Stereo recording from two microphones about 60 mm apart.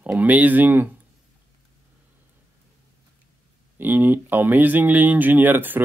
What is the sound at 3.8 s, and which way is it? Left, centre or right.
Speech, right.